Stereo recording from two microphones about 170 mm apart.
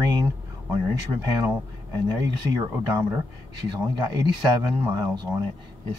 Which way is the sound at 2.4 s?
15° right (ahead or behind).